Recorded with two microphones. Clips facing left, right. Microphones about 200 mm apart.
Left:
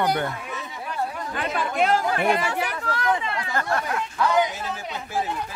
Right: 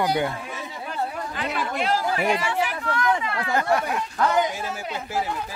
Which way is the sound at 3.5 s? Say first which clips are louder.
Right 4 dB; 15° right (ahead or behind).